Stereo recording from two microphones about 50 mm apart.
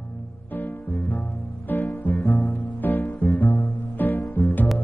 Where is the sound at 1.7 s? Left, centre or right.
Left.